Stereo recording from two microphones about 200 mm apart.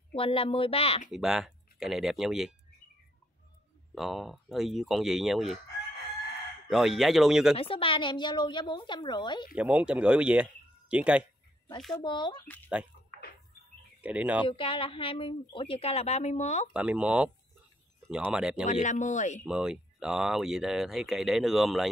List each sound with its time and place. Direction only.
0.1 s speech: 25° left (ahead or behind)
1.1 s speech: centre (ahead or behind)
3.9 s speech: centre (ahead or behind)
6.7 s speech: centre (ahead or behind)
7.5 s speech: 25° left (ahead or behind)
9.6 s speech: 5° right (ahead or behind)
11.9 s speech: 20° left (ahead or behind)
12.8 s speech: 5° right (ahead or behind)
14.0 s speech: 5° right (ahead or behind)
14.4 s speech: 25° left (ahead or behind)
16.7 s speech: 5° right (ahead or behind)
18.7 s speech: 40° left (ahead or behind)
19.4 s speech: 5° right (ahead or behind)